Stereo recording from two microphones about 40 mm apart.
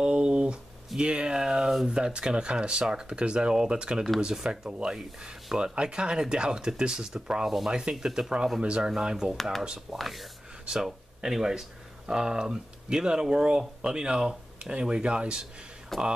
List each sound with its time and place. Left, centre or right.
0.0 s a sound: right
1.9 s speech: right
7.4 s speech: centre
9.1 s speech: centre
9.9 s speech: centre
10.7 s speech: centre
15.9 s speech: centre